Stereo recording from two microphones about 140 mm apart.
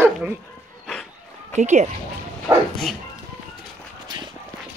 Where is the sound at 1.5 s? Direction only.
55° right (ahead or behind).